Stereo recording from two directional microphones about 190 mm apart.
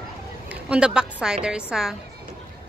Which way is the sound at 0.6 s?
5° right (ahead or behind).